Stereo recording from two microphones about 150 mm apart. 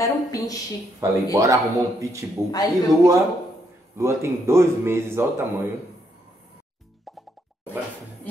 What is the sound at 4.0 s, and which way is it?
Speech, 20° right (ahead or behind).